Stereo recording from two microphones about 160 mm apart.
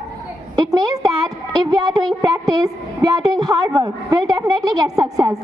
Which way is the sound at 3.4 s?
25° right (ahead or behind).